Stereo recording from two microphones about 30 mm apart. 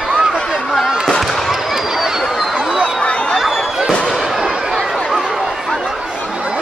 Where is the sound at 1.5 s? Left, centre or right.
Centre.